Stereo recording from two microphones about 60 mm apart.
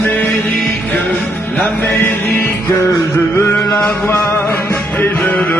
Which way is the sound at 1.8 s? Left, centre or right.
Left.